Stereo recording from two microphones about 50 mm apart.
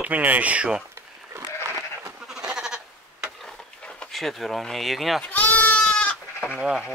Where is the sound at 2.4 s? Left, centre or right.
Centre.